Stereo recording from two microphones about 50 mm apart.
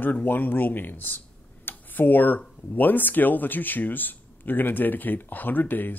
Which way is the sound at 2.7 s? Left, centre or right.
Left.